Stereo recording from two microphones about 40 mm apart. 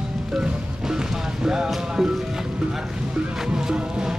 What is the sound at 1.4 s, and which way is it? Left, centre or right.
Speech, centre.